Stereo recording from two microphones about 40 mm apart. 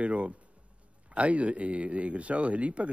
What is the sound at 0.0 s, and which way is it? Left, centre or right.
Speech, right.